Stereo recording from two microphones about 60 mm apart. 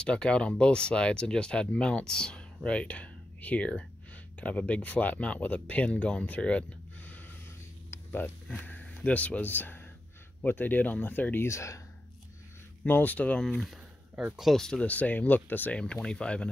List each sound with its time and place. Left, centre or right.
0.0 s speech: centre
7.9 s a sound: left
8.5 s speech: left
11.4 s speech: left
12.8 s speech: left
14.4 s speech: centre
14.8 s speech: left
15.7 s speech: centre